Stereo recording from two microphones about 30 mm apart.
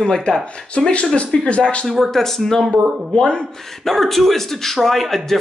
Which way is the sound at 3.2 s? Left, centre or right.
Left.